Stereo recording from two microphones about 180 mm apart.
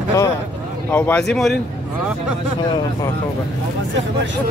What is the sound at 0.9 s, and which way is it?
Speech, 10° left (ahead or behind).